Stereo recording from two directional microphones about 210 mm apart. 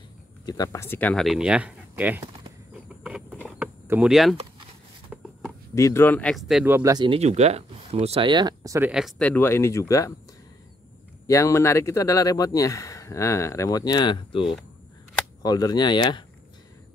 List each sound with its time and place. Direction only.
0.5 s speech: 15° left (ahead or behind); by 2.2 s 10° right (ahead or behind)
3.0 s a sound: 5° right (ahead or behind)
3.6 s speech: 10° right (ahead or behind)
5.1 s a sound: 5° right (ahead or behind)
5.8 s speech: 15° left (ahead or behind); by 9.1 s 5° right (ahead or behind)
9.2 s speech: 10° left (ahead or behind)
11.2 s speech: 15° left (ahead or behind)